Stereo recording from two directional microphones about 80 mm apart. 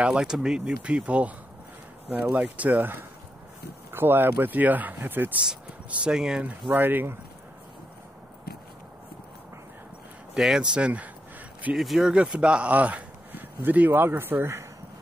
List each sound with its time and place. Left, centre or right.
0.0 s speech: centre; by 5.4 s right
5.4 s speech: centre
6.7 s speech: right
10.3 s speech: centre
11.7 s speech: centre; by 14.7 s right